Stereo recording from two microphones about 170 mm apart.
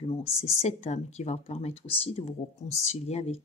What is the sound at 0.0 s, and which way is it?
Speech, 35° left (ahead or behind).